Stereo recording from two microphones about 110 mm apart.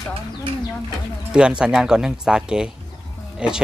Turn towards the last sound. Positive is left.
turn(degrees=-10)  # may be behind; listen again after turning